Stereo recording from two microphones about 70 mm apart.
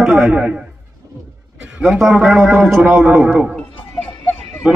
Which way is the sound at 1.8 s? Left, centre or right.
Centre.